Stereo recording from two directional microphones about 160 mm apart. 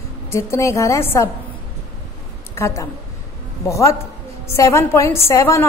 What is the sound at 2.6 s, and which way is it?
A woman's voice, 20° left (ahead or behind).